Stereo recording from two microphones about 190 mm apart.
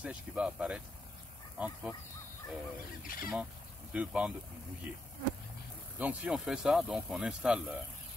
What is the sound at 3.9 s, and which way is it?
Speech, 5° right (ahead or behind).